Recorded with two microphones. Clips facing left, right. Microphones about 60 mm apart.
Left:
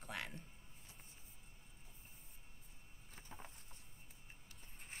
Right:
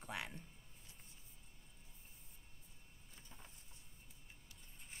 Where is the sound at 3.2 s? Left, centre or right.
Left.